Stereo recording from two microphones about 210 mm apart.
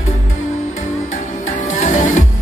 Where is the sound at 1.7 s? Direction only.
35° left (ahead or behind).